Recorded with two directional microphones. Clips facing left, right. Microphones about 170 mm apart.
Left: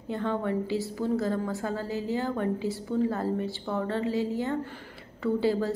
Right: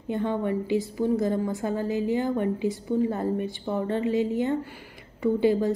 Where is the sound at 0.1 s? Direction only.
15° right (ahead or behind).